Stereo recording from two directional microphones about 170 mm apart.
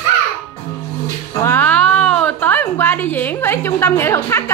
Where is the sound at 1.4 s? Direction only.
10° left (ahead or behind).